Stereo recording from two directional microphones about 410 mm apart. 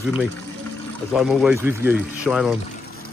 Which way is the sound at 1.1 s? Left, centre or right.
Centre.